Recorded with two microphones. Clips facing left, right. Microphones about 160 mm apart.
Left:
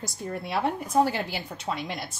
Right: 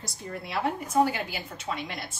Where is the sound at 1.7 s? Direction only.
20° left (ahead or behind).